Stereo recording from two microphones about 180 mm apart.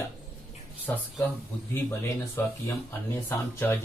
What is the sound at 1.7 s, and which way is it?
Speech, 10° left (ahead or behind).